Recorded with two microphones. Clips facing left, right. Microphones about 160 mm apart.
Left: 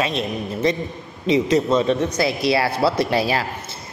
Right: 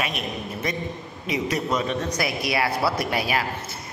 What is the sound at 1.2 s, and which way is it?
A man's voice, 25° left (ahead or behind).